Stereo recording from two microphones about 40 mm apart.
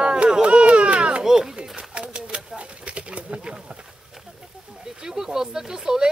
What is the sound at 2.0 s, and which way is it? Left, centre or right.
Bird, right.